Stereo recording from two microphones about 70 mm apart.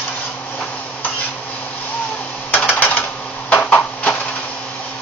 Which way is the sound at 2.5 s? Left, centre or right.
Left.